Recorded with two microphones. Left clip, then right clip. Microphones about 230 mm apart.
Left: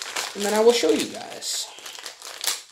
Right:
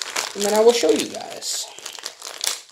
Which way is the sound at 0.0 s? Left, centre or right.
Right.